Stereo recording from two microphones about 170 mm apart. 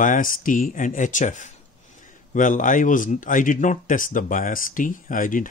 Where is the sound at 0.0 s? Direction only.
50° left (ahead or behind).